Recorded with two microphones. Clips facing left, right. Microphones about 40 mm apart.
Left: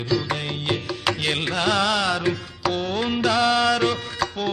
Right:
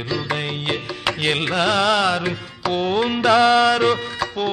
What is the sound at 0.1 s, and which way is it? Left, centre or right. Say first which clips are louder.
Carnatic music: even; centre.